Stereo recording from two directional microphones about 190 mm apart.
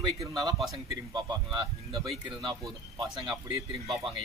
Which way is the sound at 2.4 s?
25° right (ahead or behind).